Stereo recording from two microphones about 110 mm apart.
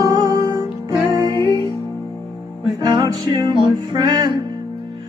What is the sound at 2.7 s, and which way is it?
Music, 35° right (ahead or behind).